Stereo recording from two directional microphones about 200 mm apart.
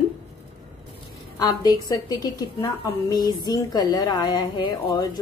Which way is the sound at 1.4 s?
20° left (ahead or behind).